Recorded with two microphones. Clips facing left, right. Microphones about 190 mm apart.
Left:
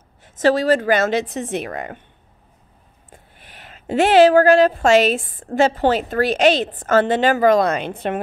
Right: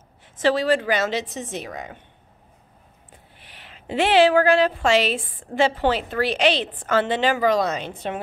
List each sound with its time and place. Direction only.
0.2 s speech: 45° left (ahead or behind); by 2.0 s 60° left (ahead or behind)
3.1 s speech: 45° left (ahead or behind)